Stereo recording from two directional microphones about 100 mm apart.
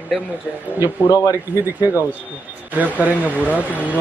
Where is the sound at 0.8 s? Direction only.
35° left (ahead or behind).